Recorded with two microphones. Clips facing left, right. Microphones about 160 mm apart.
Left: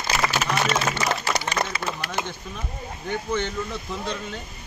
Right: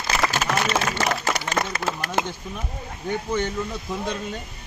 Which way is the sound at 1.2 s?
45° right (ahead or behind).